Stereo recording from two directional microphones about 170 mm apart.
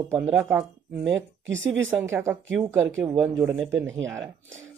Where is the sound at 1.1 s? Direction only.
90° right.